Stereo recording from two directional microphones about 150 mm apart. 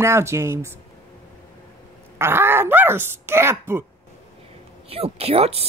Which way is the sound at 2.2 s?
15° right (ahead or behind).